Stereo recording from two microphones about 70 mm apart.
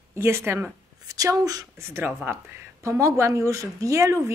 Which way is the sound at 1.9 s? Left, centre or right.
Right.